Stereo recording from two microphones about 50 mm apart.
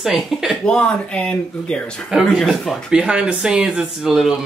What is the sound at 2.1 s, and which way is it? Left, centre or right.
Speech, centre.